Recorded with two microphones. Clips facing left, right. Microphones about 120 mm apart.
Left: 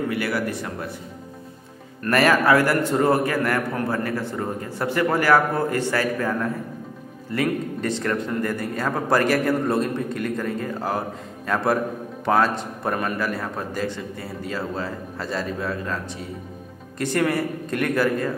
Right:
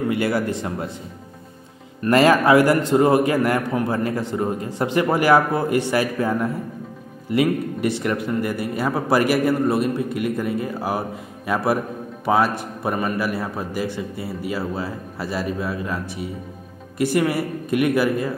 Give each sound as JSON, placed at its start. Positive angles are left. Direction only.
{"t": 0.1, "sound": "speech", "side_deg": -25}
{"t": 2.0, "sound": "a man's voice", "side_deg": -20}